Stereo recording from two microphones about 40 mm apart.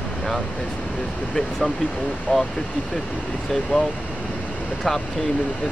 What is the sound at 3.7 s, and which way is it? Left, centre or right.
Speech, left.